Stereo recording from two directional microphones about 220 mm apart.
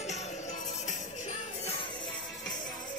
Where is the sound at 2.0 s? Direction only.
Centre (ahead or behind).